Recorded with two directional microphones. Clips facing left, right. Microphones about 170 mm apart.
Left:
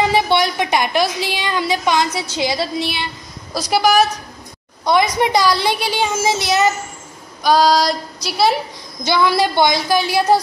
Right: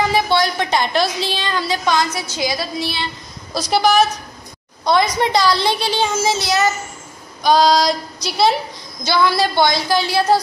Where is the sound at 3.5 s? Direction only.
5° left (ahead or behind).